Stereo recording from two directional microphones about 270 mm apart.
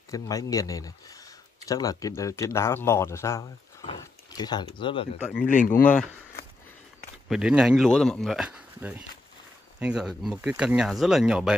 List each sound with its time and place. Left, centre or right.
0.1 s speech: centre
5.4 s speech: left
5.9 s speech: centre